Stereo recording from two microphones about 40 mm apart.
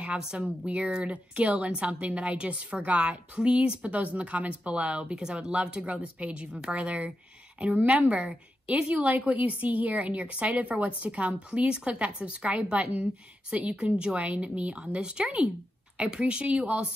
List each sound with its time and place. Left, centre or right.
0.2 s a woman's voice: right
6.8 s a woman's voice: right
12.7 s a woman's voice: right